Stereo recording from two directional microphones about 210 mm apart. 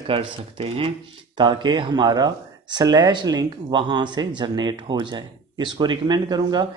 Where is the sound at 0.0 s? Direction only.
25° right (ahead or behind).